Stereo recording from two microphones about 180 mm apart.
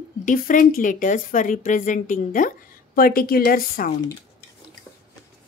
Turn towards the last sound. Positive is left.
turn(degrees=55)  # may be behind; listen again after turning